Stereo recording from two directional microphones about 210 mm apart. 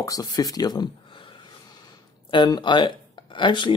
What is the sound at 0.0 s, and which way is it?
Speech, 15° left (ahead or behind).